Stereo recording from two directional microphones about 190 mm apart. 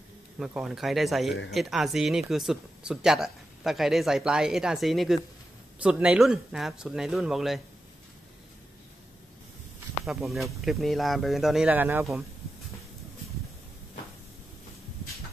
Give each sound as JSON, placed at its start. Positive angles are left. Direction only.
{"t": 0.4, "sound": "speech", "side_deg": 0}
{"t": 10.0, "sound": "speech", "side_deg": 0}